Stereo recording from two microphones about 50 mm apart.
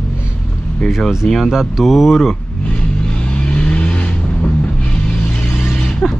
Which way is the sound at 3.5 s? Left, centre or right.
Left.